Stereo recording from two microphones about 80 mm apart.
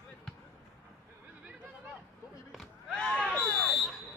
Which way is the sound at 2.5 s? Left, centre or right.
Centre.